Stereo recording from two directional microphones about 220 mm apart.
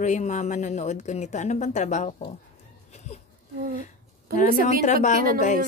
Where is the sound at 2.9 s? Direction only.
30° left (ahead or behind).